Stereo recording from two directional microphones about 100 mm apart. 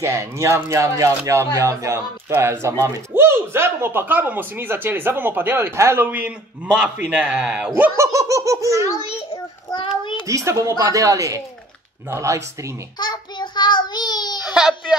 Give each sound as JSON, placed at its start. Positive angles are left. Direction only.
{"t": 0.0, "sound": "a man's voice", "side_deg": -30}
{"t": 7.9, "sound": "a woman's voice", "side_deg": -30}
{"t": 9.0, "sound": "a child's voice", "side_deg": 90}
{"t": 10.2, "sound": "a woman's voice", "side_deg": -30}
{"t": 13.0, "sound": "child singing", "side_deg": 45}
{"t": 14.4, "sound": "a man's voice", "side_deg": -5}